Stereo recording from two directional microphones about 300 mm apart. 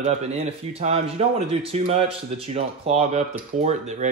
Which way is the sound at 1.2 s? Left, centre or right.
Right.